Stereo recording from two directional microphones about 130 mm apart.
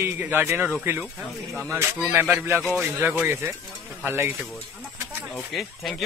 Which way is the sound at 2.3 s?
20° right (ahead or behind).